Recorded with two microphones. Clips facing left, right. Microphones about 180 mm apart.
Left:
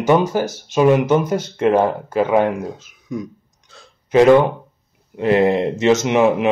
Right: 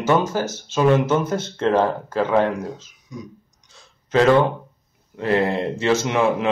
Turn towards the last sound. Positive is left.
turn(degrees=20)  # may be behind; listen again after turning